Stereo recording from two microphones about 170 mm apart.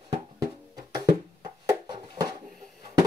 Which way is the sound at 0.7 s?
25° right (ahead or behind).